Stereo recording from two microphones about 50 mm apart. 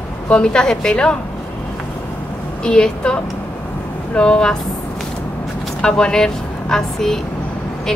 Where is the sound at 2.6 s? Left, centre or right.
Centre.